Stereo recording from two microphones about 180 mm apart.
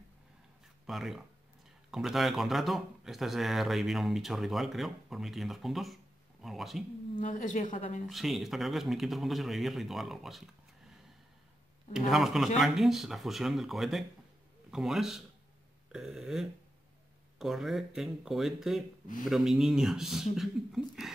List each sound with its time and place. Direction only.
0.8 s speech: centre (ahead or behind)
7.2 s a woman's voice: 45° left (ahead or behind)
8.1 s speech: centre (ahead or behind)
11.9 s speech: centre (ahead or behind)